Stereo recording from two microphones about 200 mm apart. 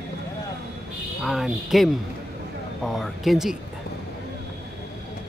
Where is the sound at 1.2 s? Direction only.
Centre (ahead or behind).